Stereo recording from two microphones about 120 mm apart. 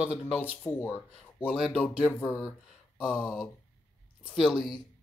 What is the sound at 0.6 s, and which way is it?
Speech, 15° left (ahead or behind).